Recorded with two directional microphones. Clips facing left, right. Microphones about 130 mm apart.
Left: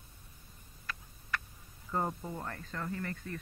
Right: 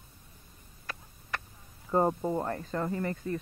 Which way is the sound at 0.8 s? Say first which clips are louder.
Right 2 dB; 35° right (ahead or behind).